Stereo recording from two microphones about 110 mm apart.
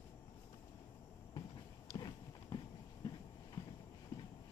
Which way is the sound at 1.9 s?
40° left (ahead or behind).